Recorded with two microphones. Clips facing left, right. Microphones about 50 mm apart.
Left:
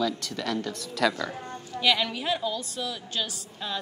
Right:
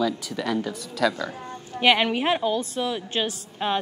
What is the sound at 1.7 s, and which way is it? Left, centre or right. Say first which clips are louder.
A woman's voice: right 5 dB; right.